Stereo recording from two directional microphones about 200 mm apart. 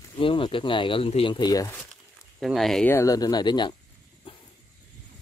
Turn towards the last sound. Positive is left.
turn(degrees=25)  # may be behind; listen again after turning